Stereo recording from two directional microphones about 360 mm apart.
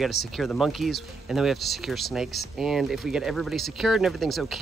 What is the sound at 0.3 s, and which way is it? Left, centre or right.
Speech, centre.